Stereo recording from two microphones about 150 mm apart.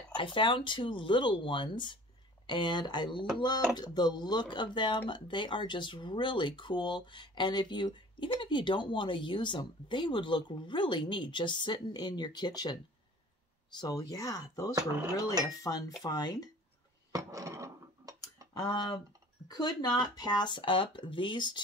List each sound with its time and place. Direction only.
0.2 s speech: 35° left (ahead or behind)
17.1 s a sound: 20° right (ahead or behind)
18.6 s speech: 30° left (ahead or behind)